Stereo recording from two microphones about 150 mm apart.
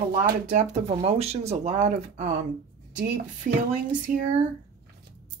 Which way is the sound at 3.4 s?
65° right (ahead or behind).